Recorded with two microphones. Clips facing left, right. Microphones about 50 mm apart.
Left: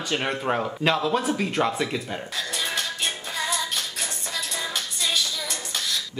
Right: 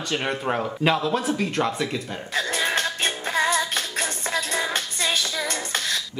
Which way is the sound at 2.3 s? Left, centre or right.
Right.